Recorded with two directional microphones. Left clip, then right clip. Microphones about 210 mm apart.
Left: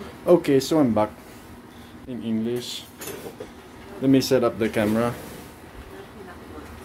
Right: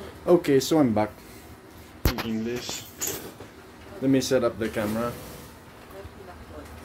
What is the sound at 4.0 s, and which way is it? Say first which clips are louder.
Speech: left 3 dB; 5° left (ahead or behind).